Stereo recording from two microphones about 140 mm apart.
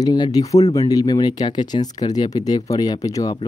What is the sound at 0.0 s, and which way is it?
Speech, 30° left (ahead or behind).